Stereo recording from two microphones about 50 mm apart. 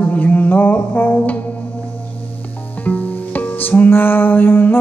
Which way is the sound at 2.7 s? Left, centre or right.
Left.